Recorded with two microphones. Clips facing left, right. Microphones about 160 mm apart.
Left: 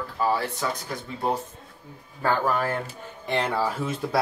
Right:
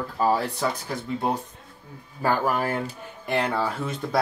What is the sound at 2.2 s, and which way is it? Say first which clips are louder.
Speech: even; 10° right (ahead or behind).